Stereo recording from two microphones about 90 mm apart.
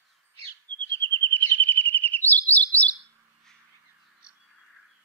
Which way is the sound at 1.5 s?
20° left (ahead or behind).